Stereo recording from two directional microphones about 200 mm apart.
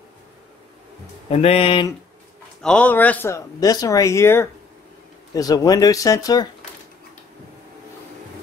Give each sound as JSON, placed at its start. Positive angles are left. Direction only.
{"t": 1.3, "sound": "speech", "side_deg": 30}
{"t": 2.6, "sound": "speech", "side_deg": 5}